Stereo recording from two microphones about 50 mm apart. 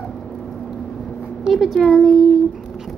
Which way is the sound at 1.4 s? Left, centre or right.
Centre.